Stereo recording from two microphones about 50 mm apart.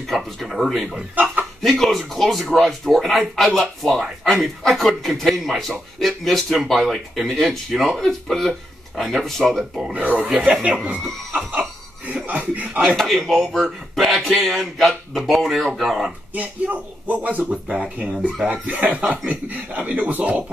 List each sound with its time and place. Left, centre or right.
0.1 s a man's voice: centre
1.1 s chicken: right
1.6 s a man's voice: centre
9.9 s speech: right
12.1 s a sound: right
12.9 s a man's voice: centre
16.3 s speech: right
17.5 s speech: centre